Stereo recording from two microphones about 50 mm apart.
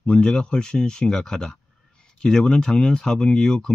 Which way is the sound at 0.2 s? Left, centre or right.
Centre.